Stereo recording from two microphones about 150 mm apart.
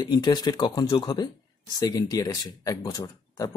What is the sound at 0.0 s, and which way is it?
Speech, 30° left (ahead or behind).